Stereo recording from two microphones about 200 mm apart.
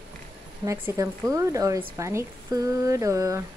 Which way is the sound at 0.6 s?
15° right (ahead or behind).